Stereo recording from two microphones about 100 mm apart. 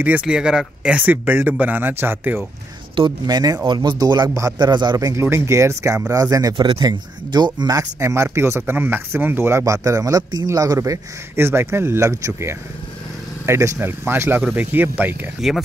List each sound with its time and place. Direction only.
0.0 s speech: 10° right (ahead or behind)
3.3 s a man's voice: 40° right (ahead or behind)
4.3 s a man's voice: 35° right (ahead or behind)
5.2 s a man's voice: 25° right (ahead or behind)
6.5 s a man's voice: 60° right (ahead or behind)
6.8 s speech: 45° right (ahead or behind)
8.0 s a man's voice: 30° right (ahead or behind)
15.4 s speech: 5° right (ahead or behind)